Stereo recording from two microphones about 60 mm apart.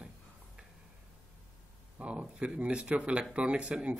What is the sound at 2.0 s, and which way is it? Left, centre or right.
Speech, right.